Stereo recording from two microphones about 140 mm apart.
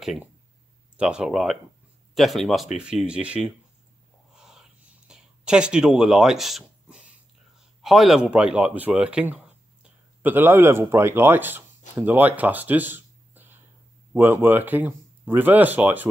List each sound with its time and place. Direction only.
0.9 s speech: 5° right (ahead or behind)
4.3 s a sound: 5° right (ahead or behind)
7.8 s speech: centre (ahead or behind)